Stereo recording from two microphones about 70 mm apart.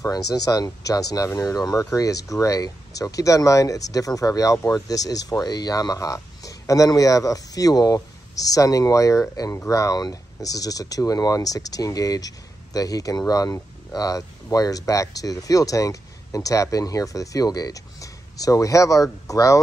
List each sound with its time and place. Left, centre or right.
0.0 s speech: left